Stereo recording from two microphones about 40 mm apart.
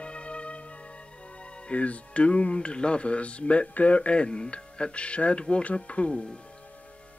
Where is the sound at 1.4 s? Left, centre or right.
Left.